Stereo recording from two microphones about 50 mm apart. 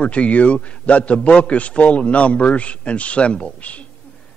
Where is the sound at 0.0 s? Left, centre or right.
Left.